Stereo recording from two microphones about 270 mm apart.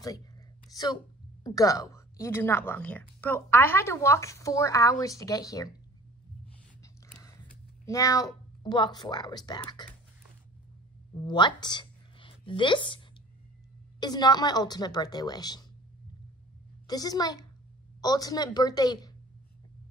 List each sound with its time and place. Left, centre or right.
0.0 s a sound: centre
1.4 s a woman's voice: centre
6.8 s a sound: centre
7.8 s a woman's voice: centre
11.1 s a woman's voice: centre
16.8 s a woman's voice: centre